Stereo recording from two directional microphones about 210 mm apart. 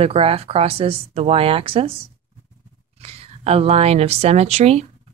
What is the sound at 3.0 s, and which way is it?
Speech, 30° right (ahead or behind).